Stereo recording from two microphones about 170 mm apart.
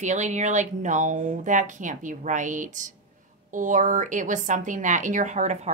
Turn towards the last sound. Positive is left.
turn(degrees=-45)  # may be behind; listen again after turning